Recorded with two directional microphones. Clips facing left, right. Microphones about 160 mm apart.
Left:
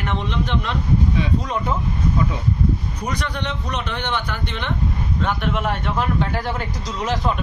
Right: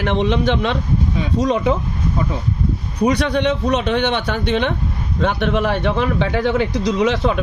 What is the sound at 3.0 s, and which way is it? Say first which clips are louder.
A man's voice: right 14 dB; 70° right (ahead or behind).